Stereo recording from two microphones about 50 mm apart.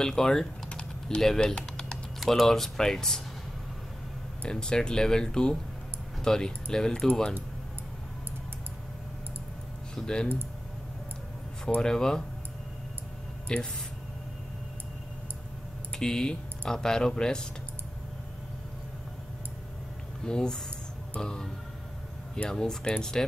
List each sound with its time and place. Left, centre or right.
0.0 s speech: centre
1.5 s typing: centre
2.1 s speech: centre
4.4 s speech: centre
10.0 s speech: centre
11.8 s speech: centre
13.5 s speech: centre
16.0 s speech: centre
20.2 s speech: centre
21.1 s music: centre
22.3 s speech: centre